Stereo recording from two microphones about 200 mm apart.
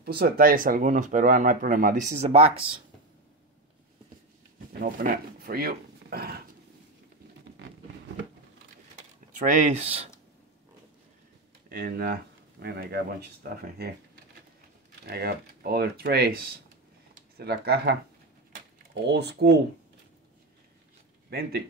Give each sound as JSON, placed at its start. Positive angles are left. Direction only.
{"t": 0.0, "sound": "speech", "side_deg": -50}
{"t": 2.3, "sound": "speech", "side_deg": -30}
{"t": 4.7, "sound": "speech", "side_deg": -45}
{"t": 9.5, "sound": "speech", "side_deg": -35}
{"t": 11.7, "sound": "speech", "side_deg": -50}
{"t": 15.0, "sound": "speech", "side_deg": -50}
{"t": 19.0, "sound": "speech", "side_deg": -55}
{"t": 21.3, "sound": "speech", "side_deg": -50}